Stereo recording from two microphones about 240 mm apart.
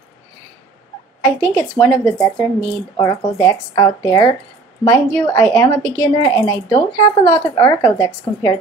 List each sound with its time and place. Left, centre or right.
1.4 s a woman's voice: centre